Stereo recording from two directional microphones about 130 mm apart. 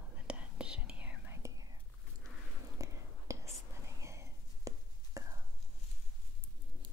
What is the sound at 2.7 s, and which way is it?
Whispering, 25° right (ahead or behind).